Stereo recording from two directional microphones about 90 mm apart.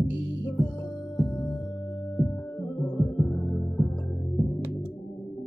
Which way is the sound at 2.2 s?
15° left (ahead or behind).